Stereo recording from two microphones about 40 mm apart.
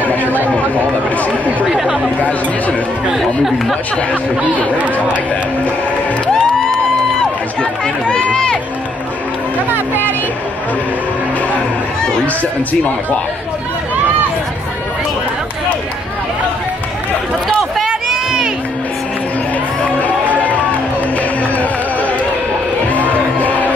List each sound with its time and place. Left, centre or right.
0.0 s chatter: left
1.1 s speech: left
1.7 s speech: centre
2.1 s speech: left
3.2 s speech: centre
6.2 s music: centre
7.8 s speech: left
9.7 s speech: right
17.8 s run: centre
19.8 s music: left